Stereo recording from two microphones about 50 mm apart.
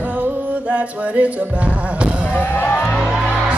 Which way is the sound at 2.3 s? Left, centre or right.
Left.